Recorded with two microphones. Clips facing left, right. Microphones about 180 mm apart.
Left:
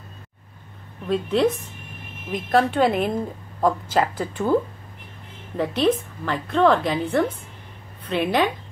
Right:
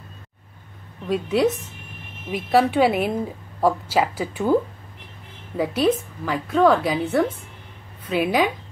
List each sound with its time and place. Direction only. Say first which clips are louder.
1.0 s a woman's voice: even; 10° right (ahead or behind)
5.6 s a woman's voice: even; 5° right (ahead or behind)